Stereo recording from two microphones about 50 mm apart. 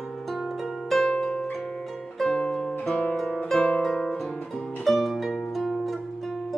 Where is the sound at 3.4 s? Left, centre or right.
Centre.